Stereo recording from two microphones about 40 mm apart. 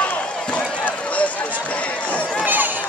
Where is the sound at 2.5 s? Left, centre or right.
Right.